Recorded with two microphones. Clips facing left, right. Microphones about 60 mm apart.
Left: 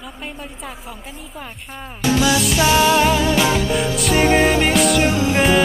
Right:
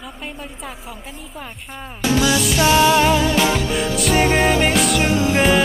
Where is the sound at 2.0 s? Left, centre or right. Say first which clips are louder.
Left 1 dB; centre.